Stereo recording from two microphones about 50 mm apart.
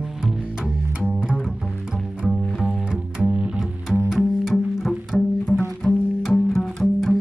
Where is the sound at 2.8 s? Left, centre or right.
Centre.